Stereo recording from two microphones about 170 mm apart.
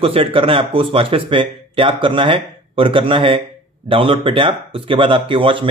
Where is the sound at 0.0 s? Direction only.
30° right (ahead or behind).